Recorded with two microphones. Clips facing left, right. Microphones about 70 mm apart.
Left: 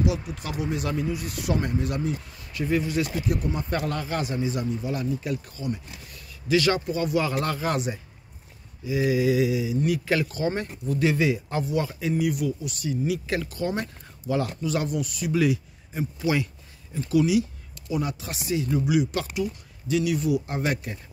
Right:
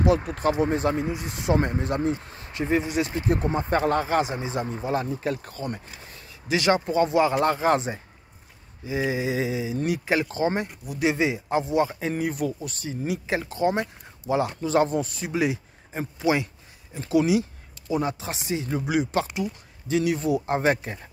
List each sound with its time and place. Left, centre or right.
0.0 s speech: right
4.7 s speech: right
5.9 s speech: right